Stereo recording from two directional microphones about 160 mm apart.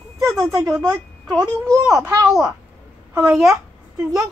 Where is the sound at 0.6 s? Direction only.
5° right (ahead or behind).